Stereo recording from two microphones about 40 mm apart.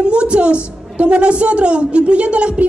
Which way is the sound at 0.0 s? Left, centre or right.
Right.